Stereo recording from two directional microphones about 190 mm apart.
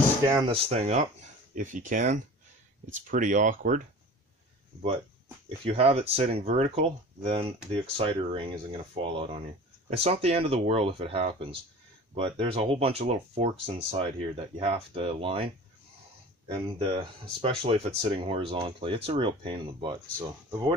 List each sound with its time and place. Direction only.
0.5 s speech: 35° right (ahead or behind)
5.7 s speech: 30° right (ahead or behind)
17.4 s speech: 30° right (ahead or behind)